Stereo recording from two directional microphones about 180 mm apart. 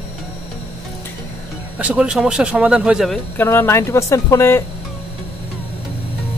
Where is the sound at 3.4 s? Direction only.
15° left (ahead or behind).